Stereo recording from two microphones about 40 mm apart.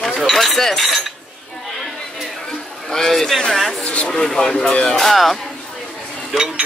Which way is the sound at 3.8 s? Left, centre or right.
Left.